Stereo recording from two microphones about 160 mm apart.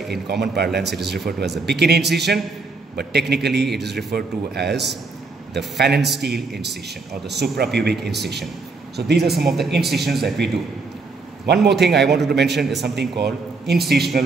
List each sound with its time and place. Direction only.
0.1 s a man's voice: 90° right
9.2 s speech: centre (ahead or behind)
11.4 s a man's voice: 90° right